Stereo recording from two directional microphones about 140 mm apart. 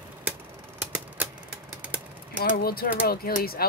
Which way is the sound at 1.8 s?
10° right (ahead or behind).